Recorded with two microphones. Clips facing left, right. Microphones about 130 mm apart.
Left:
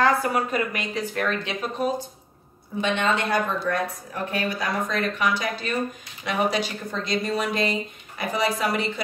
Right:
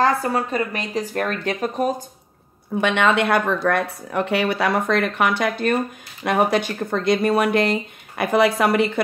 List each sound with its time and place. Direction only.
0.0 s speech: 35° right (ahead or behind); by 2.0 s 50° right (ahead or behind)
2.7 s speech: 65° right (ahead or behind)